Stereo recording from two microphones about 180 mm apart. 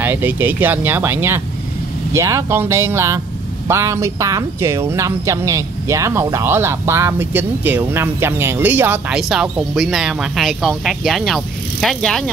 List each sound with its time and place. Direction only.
0.0 s speech: 10° right (ahead or behind)